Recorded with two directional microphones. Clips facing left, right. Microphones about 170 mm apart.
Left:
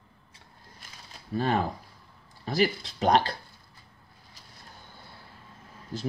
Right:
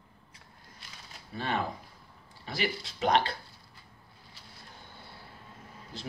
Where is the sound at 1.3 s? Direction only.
40° left (ahead or behind).